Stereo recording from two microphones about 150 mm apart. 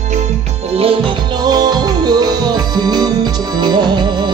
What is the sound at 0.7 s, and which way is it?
Music, 40° right (ahead or behind).